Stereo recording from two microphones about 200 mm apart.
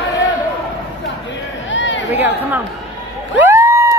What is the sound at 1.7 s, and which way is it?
Chatter, 65° left (ahead or behind).